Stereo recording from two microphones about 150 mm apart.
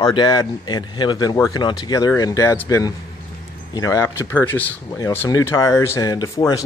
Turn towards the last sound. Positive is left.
turn(degrees=20)  # may be behind; listen again after turning